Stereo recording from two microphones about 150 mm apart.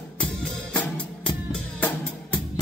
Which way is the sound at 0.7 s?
10° left (ahead or behind).